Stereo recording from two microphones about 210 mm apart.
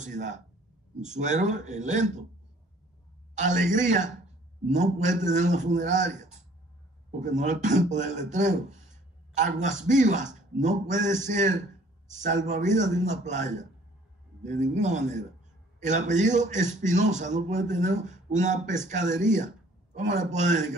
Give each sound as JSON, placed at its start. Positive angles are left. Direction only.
{"t": 0.0, "sound": "speech", "side_deg": -35}
{"t": 3.3, "sound": "speech", "side_deg": -35}